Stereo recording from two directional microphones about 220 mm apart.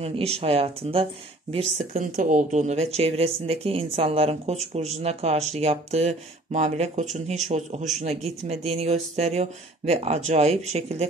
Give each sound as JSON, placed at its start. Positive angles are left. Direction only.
{"t": 0.0, "sound": "speech", "side_deg": -25}